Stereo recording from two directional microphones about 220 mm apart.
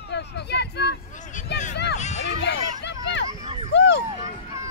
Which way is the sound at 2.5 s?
50° left (ahead or behind).